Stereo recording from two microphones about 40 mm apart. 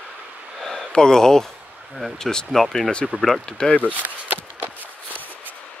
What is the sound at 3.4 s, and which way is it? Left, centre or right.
Speech, left.